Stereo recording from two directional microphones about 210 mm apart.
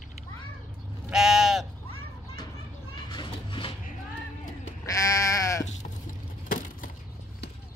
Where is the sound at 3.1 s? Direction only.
20° left (ahead or behind).